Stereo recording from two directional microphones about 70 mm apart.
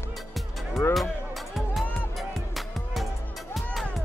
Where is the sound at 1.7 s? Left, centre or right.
Centre.